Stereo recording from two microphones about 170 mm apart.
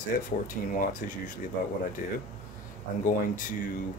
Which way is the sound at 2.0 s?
50° left (ahead or behind).